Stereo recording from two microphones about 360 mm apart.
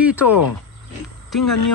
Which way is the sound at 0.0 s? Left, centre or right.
Centre.